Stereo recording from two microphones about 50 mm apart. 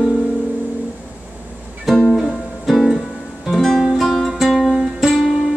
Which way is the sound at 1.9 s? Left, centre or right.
Centre.